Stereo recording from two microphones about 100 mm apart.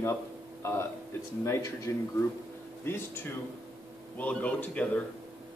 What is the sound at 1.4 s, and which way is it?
Speech, 30° left (ahead or behind).